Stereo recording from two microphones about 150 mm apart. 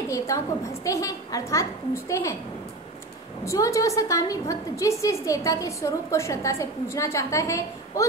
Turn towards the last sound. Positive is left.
turn(degrees=20)  # may be behind; listen again after turning